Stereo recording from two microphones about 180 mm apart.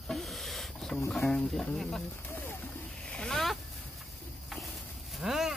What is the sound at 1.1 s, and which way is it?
Speech, centre (ahead or behind).